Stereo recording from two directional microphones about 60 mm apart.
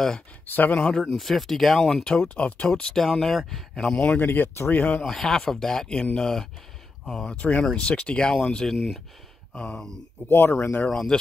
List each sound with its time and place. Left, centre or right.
0.5 s speech: left
0.7 s speech: centre
1.1 s speech: centre
2.0 s speech: centre
2.7 s speech: centre
3.8 s speech: left
4.2 s speech: left
5.0 s speech: centre
7.2 s speech: left
8.7 s speech: centre
9.5 s speech: centre
10.2 s speech: left
10.9 s speech: centre